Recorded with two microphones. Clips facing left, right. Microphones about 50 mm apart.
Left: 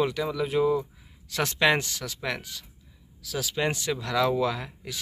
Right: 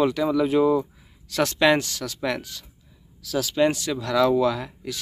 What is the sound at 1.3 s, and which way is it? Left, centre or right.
Speech, centre.